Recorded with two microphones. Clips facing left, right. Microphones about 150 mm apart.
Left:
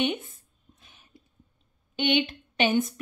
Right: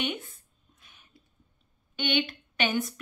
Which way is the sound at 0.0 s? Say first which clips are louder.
Left 5 dB; 25° left (ahead or behind).